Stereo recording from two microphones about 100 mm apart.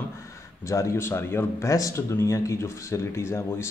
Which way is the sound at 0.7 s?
30° left (ahead or behind).